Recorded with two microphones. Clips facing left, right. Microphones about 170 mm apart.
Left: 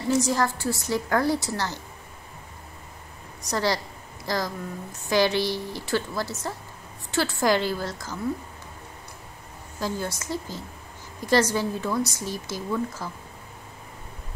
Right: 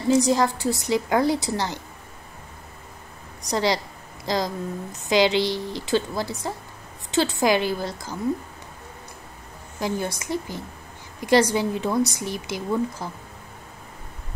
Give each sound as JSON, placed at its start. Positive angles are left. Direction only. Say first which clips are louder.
{"t": 0.1, "sound": "a woman's voice", "louder": "right 4 dB", "side_deg": -15}
{"t": 3.4, "sound": "a woman's voice", "louder": "right 3 dB", "side_deg": -15}
{"t": 9.8, "sound": "a woman's voice", "louder": "right 3 dB", "side_deg": -15}